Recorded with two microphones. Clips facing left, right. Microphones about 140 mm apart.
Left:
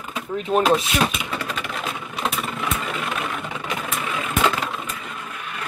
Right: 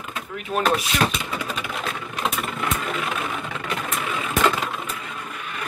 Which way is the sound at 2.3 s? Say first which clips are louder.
Even; centre (ahead or behind).